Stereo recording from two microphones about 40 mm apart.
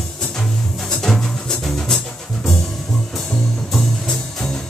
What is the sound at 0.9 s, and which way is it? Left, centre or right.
Music, centre.